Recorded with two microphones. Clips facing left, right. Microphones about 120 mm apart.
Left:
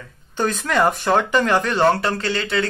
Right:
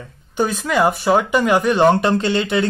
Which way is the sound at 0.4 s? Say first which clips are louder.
Right 2 dB; 10° right (ahead or behind).